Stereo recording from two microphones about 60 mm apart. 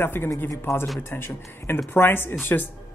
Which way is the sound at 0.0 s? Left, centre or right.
Left.